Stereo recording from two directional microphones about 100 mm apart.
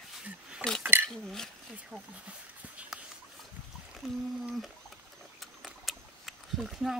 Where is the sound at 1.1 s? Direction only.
5° left (ahead or behind).